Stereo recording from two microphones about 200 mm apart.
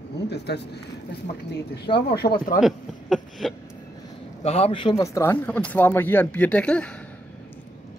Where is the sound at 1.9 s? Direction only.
25° left (ahead or behind).